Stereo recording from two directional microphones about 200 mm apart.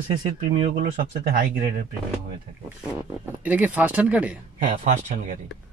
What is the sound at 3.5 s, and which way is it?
Speech, 10° right (ahead or behind).